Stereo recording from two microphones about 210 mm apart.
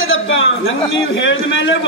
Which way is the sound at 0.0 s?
65° left (ahead or behind).